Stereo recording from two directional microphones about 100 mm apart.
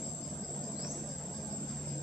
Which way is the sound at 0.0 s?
5° right (ahead or behind).